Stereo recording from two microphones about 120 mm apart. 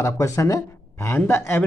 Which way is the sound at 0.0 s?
25° left (ahead or behind).